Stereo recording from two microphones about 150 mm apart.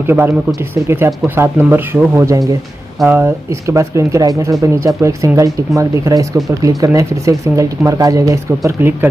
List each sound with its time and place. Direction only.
0.0 s speech: 15° right (ahead or behind)